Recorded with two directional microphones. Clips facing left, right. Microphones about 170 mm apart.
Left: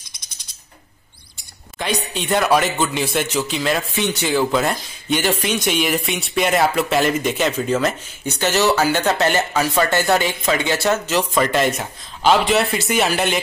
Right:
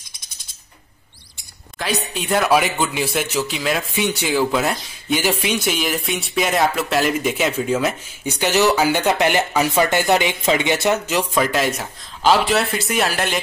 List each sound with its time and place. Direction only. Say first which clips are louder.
1.8 s speech: left 1 dB; centre (ahead or behind)